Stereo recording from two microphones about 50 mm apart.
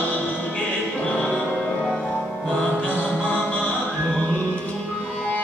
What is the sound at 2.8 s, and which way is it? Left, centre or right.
Music, left.